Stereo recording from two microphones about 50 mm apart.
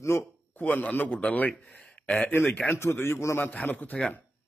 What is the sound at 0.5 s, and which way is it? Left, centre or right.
A man's voice, left.